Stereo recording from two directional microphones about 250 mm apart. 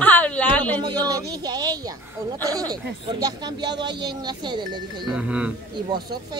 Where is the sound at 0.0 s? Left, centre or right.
Centre.